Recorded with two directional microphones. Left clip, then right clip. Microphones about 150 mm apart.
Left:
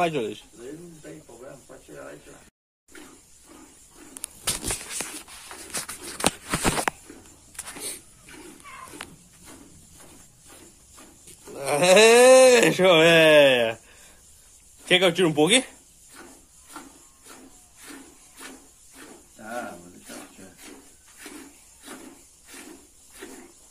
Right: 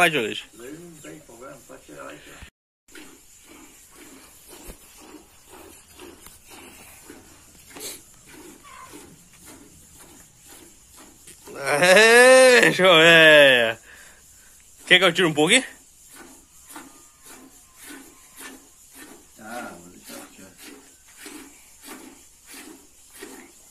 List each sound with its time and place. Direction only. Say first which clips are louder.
0.0 s a man's voice: right 5 dB; centre (ahead or behind)
7.7 s dog: right 1 dB; centre (ahead or behind)
11.2 s speech: right 3 dB; 5° left (ahead or behind)